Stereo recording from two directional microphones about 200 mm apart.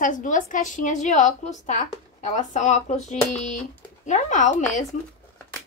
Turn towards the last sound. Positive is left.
turn(degrees=35)  # may be behind; listen again after turning